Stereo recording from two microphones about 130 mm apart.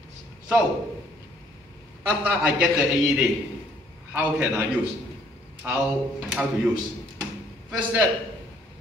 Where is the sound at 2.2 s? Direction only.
10° right (ahead or behind).